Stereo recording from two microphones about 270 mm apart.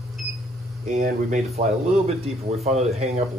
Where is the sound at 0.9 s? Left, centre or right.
Right.